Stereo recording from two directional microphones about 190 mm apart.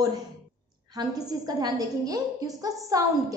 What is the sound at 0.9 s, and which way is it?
A woman's voice, 20° right (ahead or behind).